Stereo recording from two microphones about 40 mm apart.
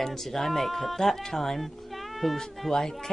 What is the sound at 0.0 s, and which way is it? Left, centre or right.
Speech, centre.